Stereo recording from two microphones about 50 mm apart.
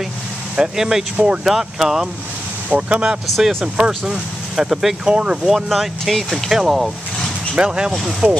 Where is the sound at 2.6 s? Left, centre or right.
Right; by 5.0 s centre.